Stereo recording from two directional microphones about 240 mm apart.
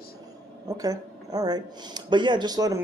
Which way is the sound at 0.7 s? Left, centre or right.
Centre.